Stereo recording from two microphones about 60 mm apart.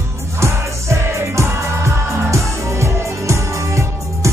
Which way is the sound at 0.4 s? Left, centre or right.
Right.